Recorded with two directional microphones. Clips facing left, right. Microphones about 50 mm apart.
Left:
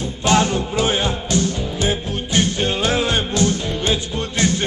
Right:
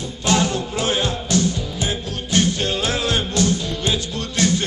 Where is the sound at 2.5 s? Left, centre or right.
Centre.